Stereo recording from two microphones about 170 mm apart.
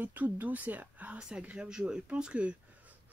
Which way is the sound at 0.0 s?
10° right (ahead or behind).